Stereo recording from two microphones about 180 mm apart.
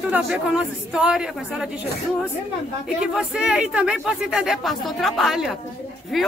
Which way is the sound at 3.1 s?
5° right (ahead or behind).